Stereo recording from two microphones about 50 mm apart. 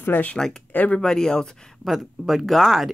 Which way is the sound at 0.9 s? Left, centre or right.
Centre.